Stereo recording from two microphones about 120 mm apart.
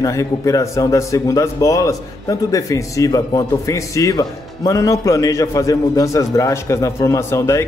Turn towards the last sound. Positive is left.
turn(degrees=25)  # may be behind; listen again after turning